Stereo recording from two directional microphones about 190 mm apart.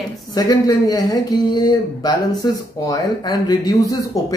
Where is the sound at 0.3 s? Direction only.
20° left (ahead or behind).